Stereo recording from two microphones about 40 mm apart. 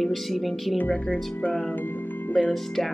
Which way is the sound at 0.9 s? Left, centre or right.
Left.